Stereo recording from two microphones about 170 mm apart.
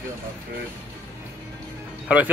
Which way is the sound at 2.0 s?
10° right (ahead or behind).